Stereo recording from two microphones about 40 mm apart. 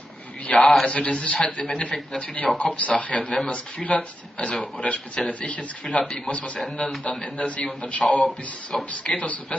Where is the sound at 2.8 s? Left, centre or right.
Left.